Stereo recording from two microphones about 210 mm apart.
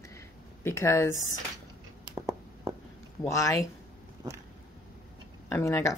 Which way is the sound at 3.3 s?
15° left (ahead or behind).